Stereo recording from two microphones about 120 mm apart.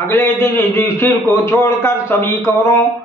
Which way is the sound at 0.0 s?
20° left (ahead or behind).